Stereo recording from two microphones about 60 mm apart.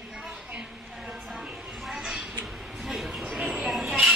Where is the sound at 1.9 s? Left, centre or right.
Centre.